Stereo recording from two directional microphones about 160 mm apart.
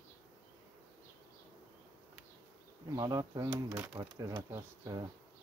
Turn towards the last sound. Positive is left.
turn(degrees=-20)  # may be behind; listen again after turning